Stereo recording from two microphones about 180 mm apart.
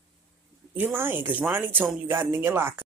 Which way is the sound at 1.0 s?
10° right (ahead or behind).